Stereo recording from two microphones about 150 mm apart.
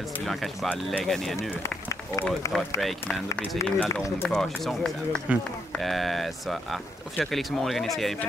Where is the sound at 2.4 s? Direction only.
20° left (ahead or behind).